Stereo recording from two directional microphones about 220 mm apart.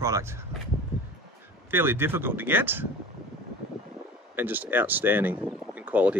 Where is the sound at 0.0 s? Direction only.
15° right (ahead or behind).